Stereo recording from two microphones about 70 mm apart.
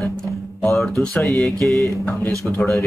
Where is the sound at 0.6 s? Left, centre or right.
Centre.